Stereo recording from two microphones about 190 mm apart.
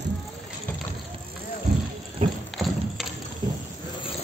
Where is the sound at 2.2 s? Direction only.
30° right (ahead or behind).